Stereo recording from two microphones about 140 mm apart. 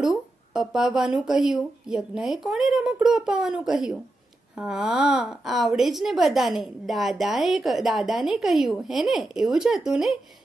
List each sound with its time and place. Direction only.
0.0 s a woman's voice: 5° right (ahead or behind)